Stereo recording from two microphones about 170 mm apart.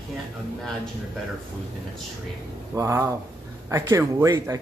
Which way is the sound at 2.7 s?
15° right (ahead or behind).